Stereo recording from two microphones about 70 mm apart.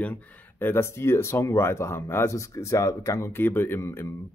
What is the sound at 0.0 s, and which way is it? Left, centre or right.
Speech, left.